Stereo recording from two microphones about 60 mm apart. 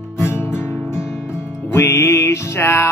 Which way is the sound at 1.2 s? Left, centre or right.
Left.